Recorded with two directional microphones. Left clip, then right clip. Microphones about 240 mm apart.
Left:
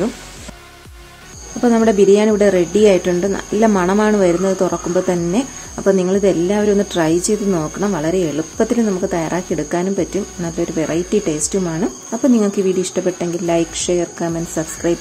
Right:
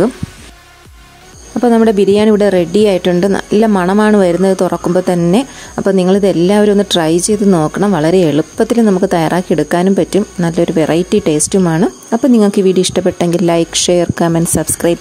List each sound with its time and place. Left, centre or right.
1.6 s speech: right